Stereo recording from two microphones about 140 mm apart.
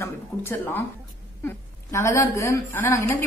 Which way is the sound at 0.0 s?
15° left (ahead or behind).